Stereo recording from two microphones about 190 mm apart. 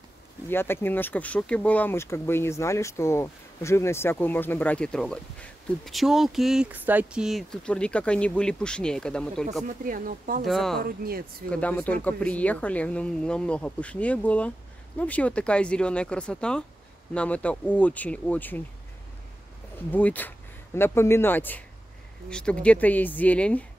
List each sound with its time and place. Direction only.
0.5 s speech: 10° left (ahead or behind)
9.7 s speech: 45° right (ahead or behind)
10.4 s speech: centre (ahead or behind)
10.8 s speech: 50° right (ahead or behind)
11.5 s speech: 10° left (ahead or behind)
19.9 s speech: 10° left (ahead or behind)